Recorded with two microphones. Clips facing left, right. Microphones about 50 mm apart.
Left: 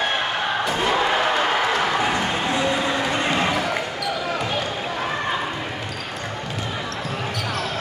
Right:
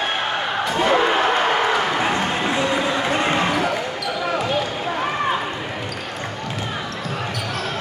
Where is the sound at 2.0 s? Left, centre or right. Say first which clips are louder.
Right 1 dB; right.